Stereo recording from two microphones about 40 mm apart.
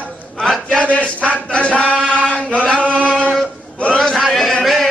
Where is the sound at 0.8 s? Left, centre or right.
Left.